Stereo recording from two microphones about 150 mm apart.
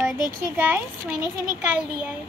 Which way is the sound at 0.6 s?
10° right (ahead or behind).